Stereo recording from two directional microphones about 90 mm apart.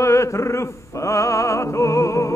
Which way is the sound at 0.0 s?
30° left (ahead or behind).